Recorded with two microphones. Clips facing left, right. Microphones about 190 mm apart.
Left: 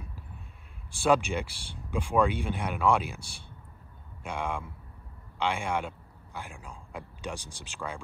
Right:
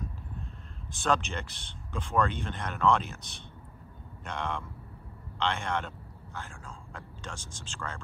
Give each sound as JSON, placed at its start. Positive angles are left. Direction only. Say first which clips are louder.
{"t": 1.0, "sound": "speech", "louder": "left 5 dB", "side_deg": 10}
{"t": 4.2, "sound": "speech", "louder": "left 2 dB", "side_deg": 10}